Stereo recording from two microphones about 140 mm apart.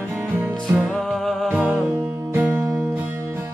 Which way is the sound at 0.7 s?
Centre (ahead or behind).